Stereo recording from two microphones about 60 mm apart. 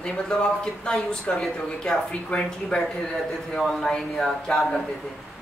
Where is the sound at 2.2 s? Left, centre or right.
Centre.